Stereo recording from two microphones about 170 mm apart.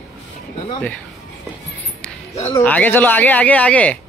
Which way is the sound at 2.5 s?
10° left (ahead or behind).